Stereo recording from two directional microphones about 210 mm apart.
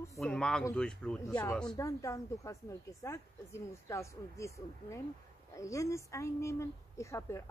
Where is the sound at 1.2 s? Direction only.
15° left (ahead or behind).